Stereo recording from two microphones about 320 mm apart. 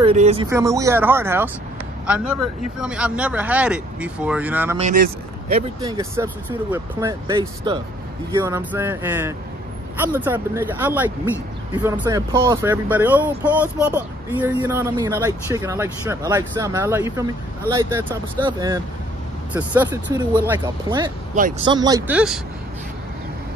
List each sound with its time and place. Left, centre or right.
0.0 s speech: centre
4.7 s speech: right
5.8 s speech: centre
18.4 s speech: centre